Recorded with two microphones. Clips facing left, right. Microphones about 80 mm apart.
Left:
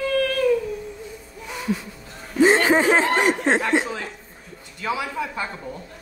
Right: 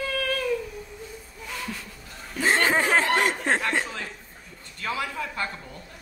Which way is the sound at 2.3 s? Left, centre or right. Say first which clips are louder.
Left 6 dB; centre.